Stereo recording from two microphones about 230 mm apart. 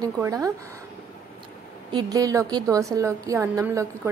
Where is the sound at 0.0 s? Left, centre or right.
Centre.